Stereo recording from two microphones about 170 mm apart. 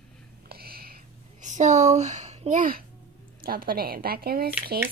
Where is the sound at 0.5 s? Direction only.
65° right (ahead or behind).